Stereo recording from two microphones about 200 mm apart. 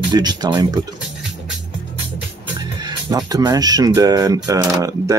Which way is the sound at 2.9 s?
20° right (ahead or behind).